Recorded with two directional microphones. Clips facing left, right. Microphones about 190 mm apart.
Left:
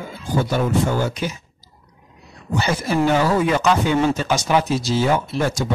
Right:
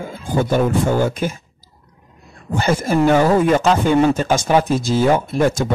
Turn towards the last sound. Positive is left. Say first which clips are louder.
# right 5 dB
turn(degrees=-50)  # may be behind; listen again after turning